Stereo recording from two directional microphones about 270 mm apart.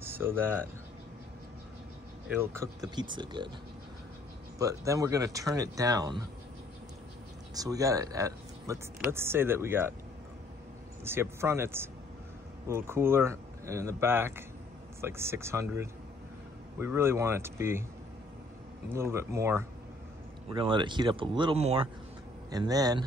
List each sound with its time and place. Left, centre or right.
0.0 s speech: centre
2.2 s speech: centre
4.6 s speech: centre
7.5 s speech: centre
11.1 s speech: centre
18.9 s speech: centre